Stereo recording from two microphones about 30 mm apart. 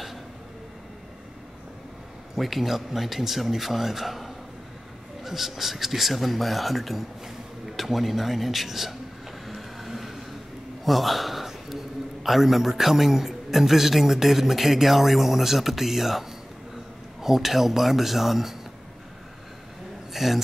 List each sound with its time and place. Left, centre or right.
2.3 s speech: centre
9.5 s vehicle: centre
10.9 s a man's voice: centre
20.1 s speech: centre